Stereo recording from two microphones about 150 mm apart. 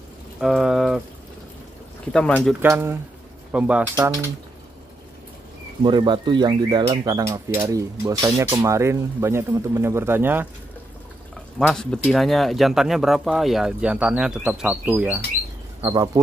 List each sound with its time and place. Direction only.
0.4 s speech: 5° right (ahead or behind)
2.1 s speech: 5° left (ahead or behind)
2.6 s speech: 15° right (ahead or behind)
5.9 s speech: 30° right (ahead or behind); by 10.5 s 15° right (ahead or behind)
11.5 s speech: 5° left (ahead or behind); by 15.2 s 10° right (ahead or behind)
15.8 s speech: 25° right (ahead or behind)